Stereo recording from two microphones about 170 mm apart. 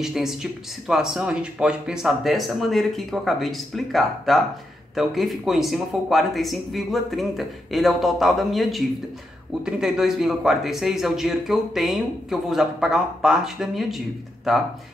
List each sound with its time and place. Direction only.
0.0 s speech: 5° right (ahead or behind)